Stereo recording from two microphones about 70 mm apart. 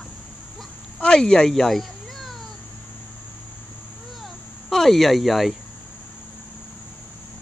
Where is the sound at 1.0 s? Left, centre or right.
Centre.